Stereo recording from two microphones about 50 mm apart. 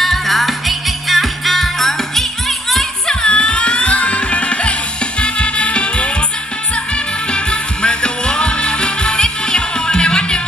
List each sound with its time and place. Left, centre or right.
0.0 s music: centre
3.1 s music: centre
7.2 s music: centre